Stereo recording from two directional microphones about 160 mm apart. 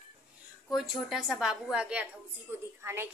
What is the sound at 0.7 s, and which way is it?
A woman's voice, centre (ahead or behind).